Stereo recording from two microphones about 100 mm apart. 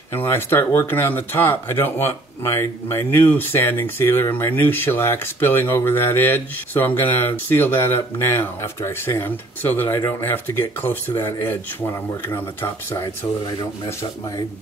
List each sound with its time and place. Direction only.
0.1 s speech: 20° left (ahead or behind)